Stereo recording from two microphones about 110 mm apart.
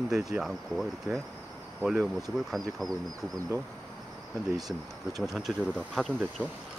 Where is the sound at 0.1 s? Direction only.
5° right (ahead or behind).